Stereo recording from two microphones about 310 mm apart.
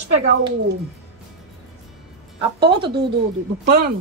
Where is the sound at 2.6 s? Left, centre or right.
Centre.